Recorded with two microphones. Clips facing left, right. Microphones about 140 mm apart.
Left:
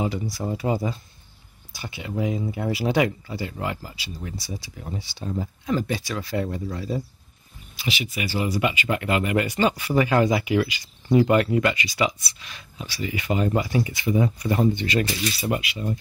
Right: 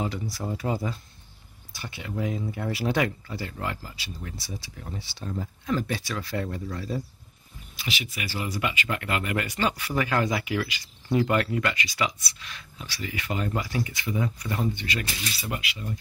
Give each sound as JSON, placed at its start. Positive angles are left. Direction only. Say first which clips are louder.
{"t": 0.0, "sound": "speech", "louder": "left 4 dB", "side_deg": 10}
{"t": 1.8, "sound": "speech", "louder": "left 4 dB", "side_deg": 5}
{"t": 8.0, "sound": "speech", "louder": "left 8 dB", "side_deg": 20}